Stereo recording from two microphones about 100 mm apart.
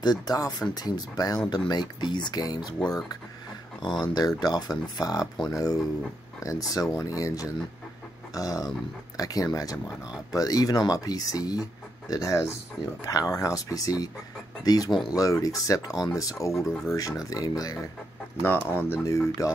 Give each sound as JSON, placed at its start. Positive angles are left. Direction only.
{"t": 0.0, "sound": "speech", "side_deg": 40}
{"t": 3.8, "sound": "speech", "side_deg": 45}
{"t": 18.4, "sound": "speech", "side_deg": 20}
{"t": 19.0, "sound": "speech", "side_deg": 35}